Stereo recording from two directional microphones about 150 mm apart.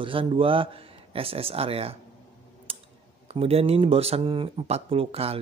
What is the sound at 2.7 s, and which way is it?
Clicking, 40° right (ahead or behind).